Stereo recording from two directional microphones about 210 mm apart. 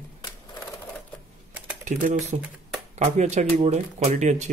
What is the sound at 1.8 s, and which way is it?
Speech, 35° right (ahead or behind).